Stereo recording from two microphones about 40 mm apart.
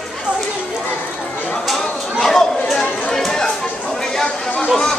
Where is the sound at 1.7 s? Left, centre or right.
Centre.